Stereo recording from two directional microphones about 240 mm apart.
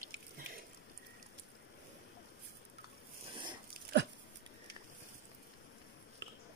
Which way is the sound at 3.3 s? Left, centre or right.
Centre.